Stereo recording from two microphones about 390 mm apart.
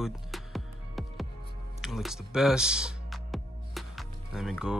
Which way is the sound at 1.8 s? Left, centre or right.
Centre.